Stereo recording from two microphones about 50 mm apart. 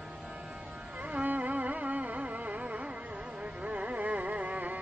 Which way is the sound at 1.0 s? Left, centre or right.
Right.